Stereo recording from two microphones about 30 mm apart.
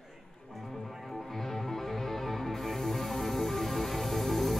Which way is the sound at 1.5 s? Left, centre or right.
Centre.